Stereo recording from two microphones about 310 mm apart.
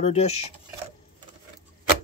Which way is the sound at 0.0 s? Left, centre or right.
Centre.